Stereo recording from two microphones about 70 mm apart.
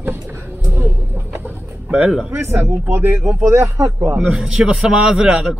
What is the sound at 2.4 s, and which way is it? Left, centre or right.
Speech, right.